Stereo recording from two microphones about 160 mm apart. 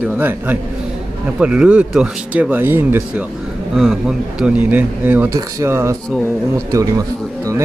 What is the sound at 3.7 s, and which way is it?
Speech, centre (ahead or behind).